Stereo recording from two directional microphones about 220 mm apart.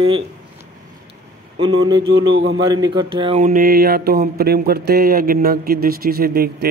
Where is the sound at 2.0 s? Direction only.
65° right (ahead or behind).